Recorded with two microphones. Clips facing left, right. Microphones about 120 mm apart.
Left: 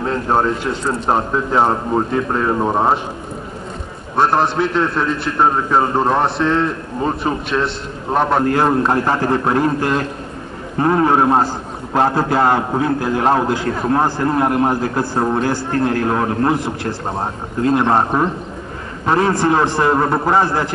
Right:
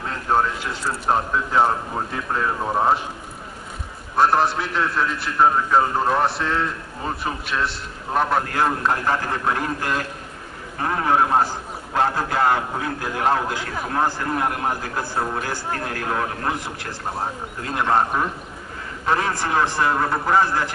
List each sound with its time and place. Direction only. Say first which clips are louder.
0.0 s a man's voice: left 5 dB; 30° left (ahead or behind)
4.2 s a man's voice: left 3 dB; 25° left (ahead or behind)